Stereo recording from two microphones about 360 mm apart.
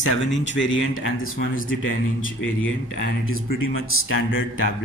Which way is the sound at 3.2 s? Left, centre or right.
Left.